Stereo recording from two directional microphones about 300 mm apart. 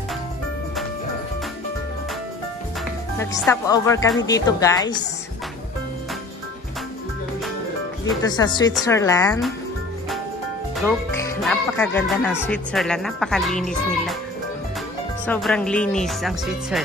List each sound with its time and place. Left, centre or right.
3.2 s speech: centre
8.0 s speech: centre
10.8 s speech: centre
15.2 s speech: centre